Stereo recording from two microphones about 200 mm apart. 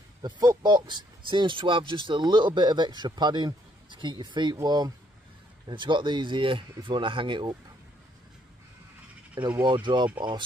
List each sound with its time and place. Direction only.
0.2 s speech: 20° right (ahead or behind)
9.4 s speech: 20° right (ahead or behind)